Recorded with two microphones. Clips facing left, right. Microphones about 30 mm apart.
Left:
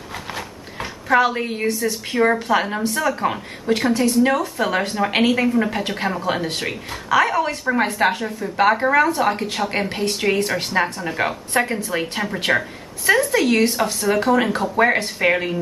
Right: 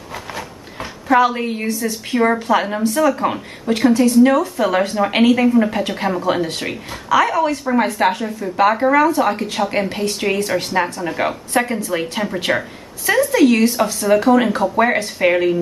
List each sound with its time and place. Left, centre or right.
0.1 s zipper: centre
1.8 s speech: centre